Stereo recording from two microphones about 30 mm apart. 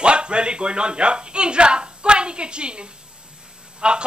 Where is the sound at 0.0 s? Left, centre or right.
Right.